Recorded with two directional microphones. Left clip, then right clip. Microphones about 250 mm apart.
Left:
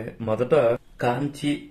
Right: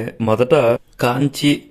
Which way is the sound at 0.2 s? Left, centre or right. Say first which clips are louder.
Right 6 dB; right.